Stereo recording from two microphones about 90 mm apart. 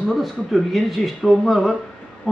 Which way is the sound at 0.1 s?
Centre (ahead or behind).